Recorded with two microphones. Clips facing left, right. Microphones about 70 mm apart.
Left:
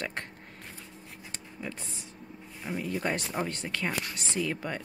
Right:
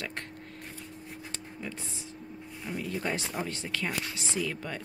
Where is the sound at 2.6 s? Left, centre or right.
Centre.